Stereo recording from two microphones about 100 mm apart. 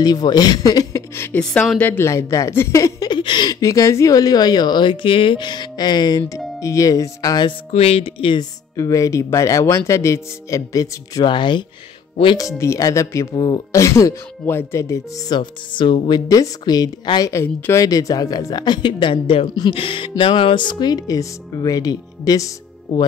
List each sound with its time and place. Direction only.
0.0 s speech: 40° left (ahead or behind); by 1.4 s 25° left (ahead or behind)
1.4 s speech: 10° left (ahead or behind)
1.8 s speech: 20° left (ahead or behind)
3.1 s speech: 50° left (ahead or behind); by 7.4 s 35° left (ahead or behind)
7.7 s speech: 80° left; by 8.5 s 60° left (ahead or behind)
8.7 s speech: 35° left (ahead or behind)
11.2 s speech: 50° left (ahead or behind)
12.4 s speech: 30° left (ahead or behind)
13.3 s speech: 40° left (ahead or behind)
13.7 s speech: 30° left (ahead or behind)
15.2 s speech: 50° left (ahead or behind)
16.3 s speech: 40° left (ahead or behind)
17.3 s speech: 30° left (ahead or behind); by 19.7 s 50° left (ahead or behind)
19.7 s speech: 60° left (ahead or behind); by 22.5 s 40° left (ahead or behind)